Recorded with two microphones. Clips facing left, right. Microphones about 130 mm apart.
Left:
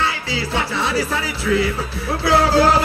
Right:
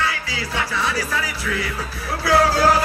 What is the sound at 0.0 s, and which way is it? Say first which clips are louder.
Music: left 3 dB; 25° left (ahead or behind).